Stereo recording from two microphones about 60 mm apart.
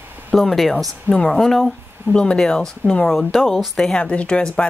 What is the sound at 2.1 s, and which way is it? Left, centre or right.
Speech, centre.